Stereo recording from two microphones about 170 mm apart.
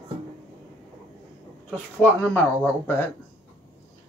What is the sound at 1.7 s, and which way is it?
Speech, 10° left (ahead or behind).